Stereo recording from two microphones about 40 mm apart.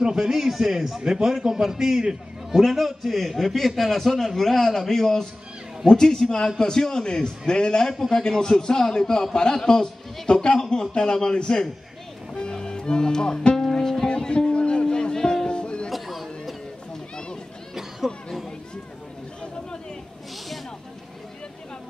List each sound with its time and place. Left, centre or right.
0.0 s a man's voice: centre
0.3 s a man's voice: centre; by 13.7 s left
13.7 s music: centre
15.9 s chatter: centre
17.7 s a sound: centre